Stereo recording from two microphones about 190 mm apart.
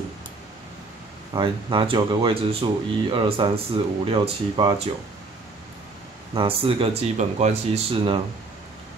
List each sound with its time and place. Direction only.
1.3 s speech: 25° right (ahead or behind)
6.3 s speech: 30° right (ahead or behind)